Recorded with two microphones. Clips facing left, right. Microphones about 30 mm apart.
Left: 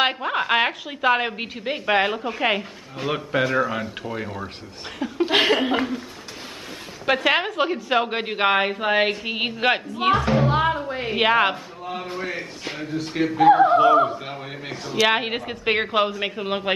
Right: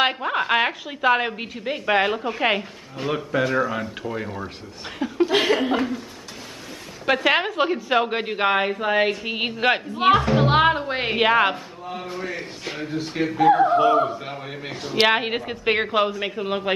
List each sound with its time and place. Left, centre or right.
0.0 s a woman's voice: centre
3.4 s speech: centre
4.9 s a woman's voice: centre
5.2 s laughter: left
5.8 s speech: left
7.1 s a woman's voice: centre
9.9 s speech: centre
10.3 s speech: right
11.1 s a man's voice: centre
12.1 s a man's voice: left
12.4 s a woman's voice: centre
13.4 s a woman's voice: centre